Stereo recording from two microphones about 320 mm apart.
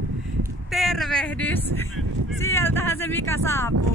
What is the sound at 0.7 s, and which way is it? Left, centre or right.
Speech, centre.